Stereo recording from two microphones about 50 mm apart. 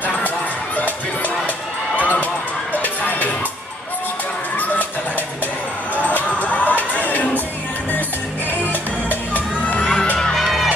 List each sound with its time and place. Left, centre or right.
2.0 s run: left
2.8 s music: left
5.9 s music: left
9.1 s music: left
10.1 s music: centre
10.4 s music: centre